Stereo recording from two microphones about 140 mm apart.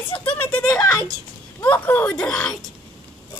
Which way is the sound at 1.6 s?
10° left (ahead or behind).